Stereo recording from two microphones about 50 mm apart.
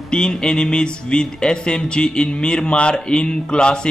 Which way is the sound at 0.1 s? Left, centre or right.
Centre.